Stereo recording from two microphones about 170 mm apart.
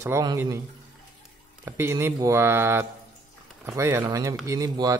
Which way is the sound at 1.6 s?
15° right (ahead or behind).